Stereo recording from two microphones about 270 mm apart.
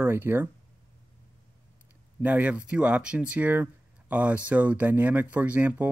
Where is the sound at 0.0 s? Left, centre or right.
Centre.